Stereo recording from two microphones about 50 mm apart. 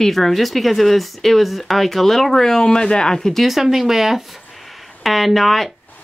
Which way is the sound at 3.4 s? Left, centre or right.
Centre.